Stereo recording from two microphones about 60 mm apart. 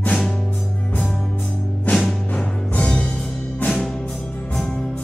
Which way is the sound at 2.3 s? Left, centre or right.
Centre.